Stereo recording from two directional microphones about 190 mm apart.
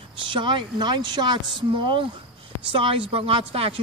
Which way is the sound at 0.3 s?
25° right (ahead or behind).